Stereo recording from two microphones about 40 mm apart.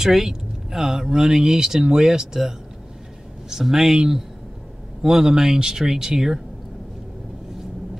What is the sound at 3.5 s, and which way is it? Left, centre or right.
Speech, centre.